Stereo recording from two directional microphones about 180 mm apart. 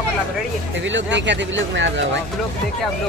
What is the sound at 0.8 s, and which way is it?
Speech, 85° right.